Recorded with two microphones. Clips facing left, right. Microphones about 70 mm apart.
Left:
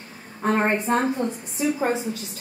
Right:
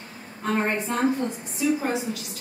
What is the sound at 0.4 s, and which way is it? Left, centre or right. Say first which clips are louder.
A woman's voice: left 3 dB; left.